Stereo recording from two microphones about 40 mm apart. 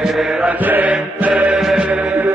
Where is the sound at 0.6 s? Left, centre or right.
Right.